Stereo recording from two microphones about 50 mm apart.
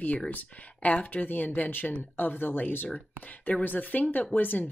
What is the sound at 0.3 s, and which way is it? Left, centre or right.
Speech, left.